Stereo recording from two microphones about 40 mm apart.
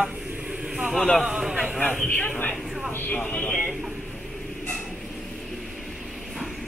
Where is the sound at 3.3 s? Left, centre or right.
Left.